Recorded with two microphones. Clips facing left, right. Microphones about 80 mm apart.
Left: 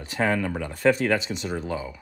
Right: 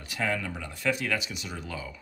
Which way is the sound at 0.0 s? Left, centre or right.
Left.